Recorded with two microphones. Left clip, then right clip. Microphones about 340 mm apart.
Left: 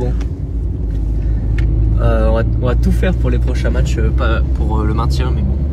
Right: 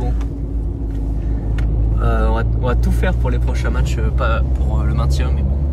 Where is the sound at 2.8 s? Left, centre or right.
Centre.